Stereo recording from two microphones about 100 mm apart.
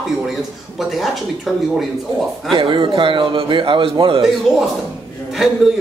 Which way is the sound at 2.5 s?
55° right (ahead or behind).